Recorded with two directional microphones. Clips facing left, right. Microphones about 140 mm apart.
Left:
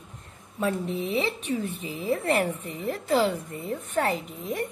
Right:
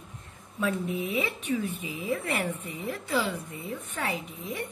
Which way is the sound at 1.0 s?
35° left (ahead or behind).